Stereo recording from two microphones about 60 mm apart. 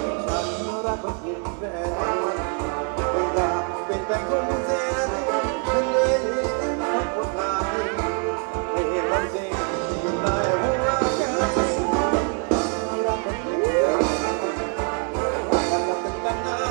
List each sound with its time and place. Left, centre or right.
2.0 s music: centre
8.7 s music: centre